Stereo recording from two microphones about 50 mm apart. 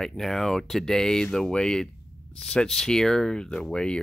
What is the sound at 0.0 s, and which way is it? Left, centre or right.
Speech, centre.